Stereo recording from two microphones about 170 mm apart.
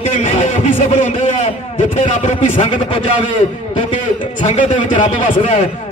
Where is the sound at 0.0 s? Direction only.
45° left (ahead or behind).